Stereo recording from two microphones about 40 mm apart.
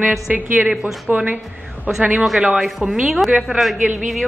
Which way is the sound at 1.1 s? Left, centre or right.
Right.